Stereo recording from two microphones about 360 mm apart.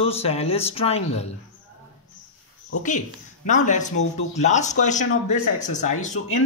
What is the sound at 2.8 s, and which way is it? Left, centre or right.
Speech, left.